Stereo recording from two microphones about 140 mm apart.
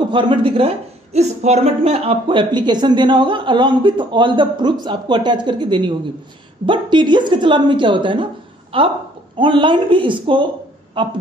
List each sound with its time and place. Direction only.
0.1 s speech: 35° right (ahead or behind)